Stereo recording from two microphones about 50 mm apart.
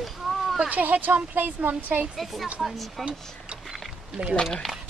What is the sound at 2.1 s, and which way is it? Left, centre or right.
Speech, centre.